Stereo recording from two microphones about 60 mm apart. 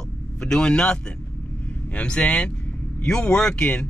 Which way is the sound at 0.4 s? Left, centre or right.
Centre.